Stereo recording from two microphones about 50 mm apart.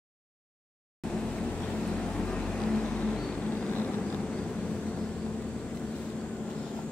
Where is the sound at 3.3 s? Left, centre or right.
Left.